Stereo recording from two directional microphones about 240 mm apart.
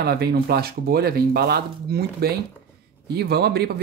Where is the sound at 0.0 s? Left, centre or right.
Right.